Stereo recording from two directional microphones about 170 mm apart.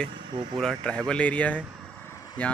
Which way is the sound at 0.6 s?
5° left (ahead or behind).